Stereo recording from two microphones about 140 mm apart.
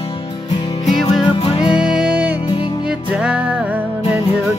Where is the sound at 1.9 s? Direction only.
10° right (ahead or behind).